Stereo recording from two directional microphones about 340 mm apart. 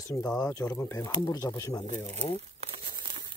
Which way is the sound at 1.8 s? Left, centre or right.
Right.